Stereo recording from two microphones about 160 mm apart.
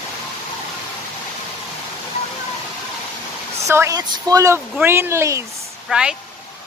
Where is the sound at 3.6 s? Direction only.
15° right (ahead or behind).